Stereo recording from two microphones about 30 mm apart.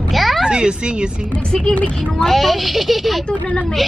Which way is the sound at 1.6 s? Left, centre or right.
Left.